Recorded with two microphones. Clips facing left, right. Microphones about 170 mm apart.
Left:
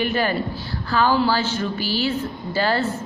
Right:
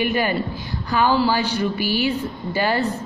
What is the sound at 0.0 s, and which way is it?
A woman's voice, 15° right (ahead or behind).